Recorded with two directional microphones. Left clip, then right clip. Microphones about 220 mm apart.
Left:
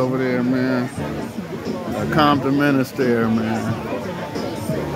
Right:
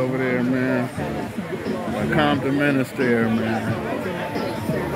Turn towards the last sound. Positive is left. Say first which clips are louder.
# left 2 dB
turn(degrees=10)  # may be behind; listen again after turning